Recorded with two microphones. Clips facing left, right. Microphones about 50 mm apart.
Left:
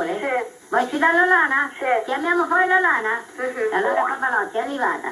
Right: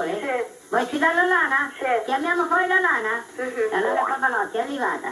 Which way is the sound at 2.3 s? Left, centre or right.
Centre.